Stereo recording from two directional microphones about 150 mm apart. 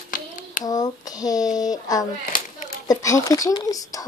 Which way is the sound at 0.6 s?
25° left (ahead or behind).